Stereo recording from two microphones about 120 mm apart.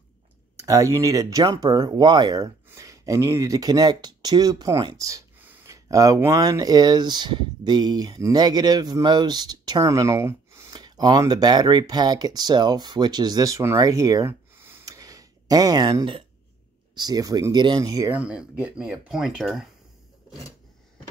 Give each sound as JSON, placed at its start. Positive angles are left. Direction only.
{"t": 0.6, "sound": "speech", "side_deg": -25}
{"t": 5.4, "sound": "a sound", "side_deg": -15}
{"t": 5.9, "sound": "speech", "side_deg": -30}
{"t": 10.7, "sound": "speech", "side_deg": -35}
{"t": 15.0, "sound": "a sound", "side_deg": -30}
{"t": 16.9, "sound": "speech", "side_deg": -35}
{"t": 18.1, "sound": "speech", "side_deg": -10}